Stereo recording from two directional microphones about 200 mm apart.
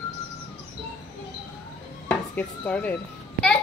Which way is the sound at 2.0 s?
5° left (ahead or behind).